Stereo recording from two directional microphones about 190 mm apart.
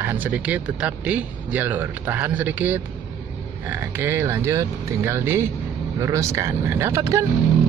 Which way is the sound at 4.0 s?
15° right (ahead or behind).